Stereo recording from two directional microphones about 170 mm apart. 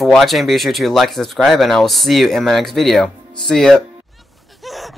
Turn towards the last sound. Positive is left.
turn(degrees=0)  # may be behind; listen again after turning